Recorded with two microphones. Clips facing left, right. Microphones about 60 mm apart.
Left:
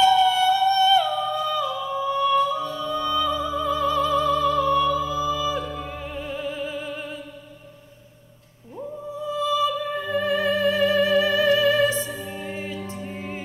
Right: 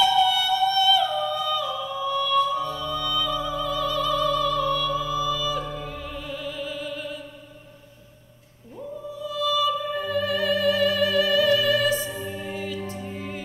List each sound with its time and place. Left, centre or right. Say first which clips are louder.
0.2 s music: left 3 dB; left
8.7 s music: left 2 dB; left